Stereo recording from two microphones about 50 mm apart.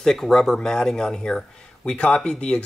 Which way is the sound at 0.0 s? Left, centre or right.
Centre.